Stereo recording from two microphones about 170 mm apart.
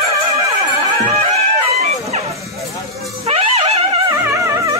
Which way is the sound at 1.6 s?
35° right (ahead or behind).